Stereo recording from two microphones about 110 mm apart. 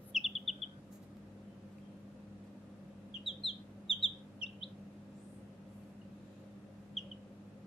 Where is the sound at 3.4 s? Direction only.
55° left (ahead or behind).